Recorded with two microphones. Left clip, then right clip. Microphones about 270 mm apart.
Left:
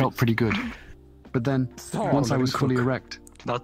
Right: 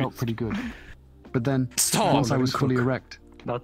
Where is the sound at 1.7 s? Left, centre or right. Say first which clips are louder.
Right 3 dB; right.